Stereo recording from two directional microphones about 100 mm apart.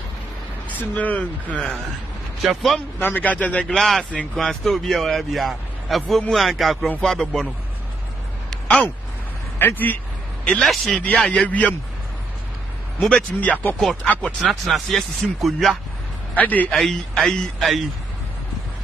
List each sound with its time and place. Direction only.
0.7 s speech: 15° left (ahead or behind)
2.4 s speech: centre (ahead or behind)
3.0 s speech: 15° left (ahead or behind)
3.6 s speech: 5° left (ahead or behind)
8.6 s speech: 15° left (ahead or behind)
10.4 s speech: 5° left (ahead or behind)
11.4 s speech: 15° left (ahead or behind)
13.0 s speech: 10° left (ahead or behind)
16.3 s speech: 15° left (ahead or behind)
16.7 s speech: 5° left (ahead or behind)